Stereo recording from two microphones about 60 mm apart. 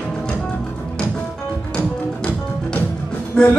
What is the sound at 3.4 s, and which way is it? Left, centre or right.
Music, centre.